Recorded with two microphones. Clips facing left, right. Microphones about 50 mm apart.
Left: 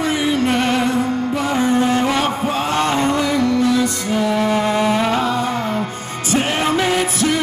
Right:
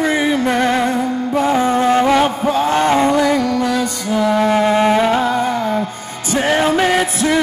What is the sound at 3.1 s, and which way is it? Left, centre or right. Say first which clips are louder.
Music: right 2 dB; right.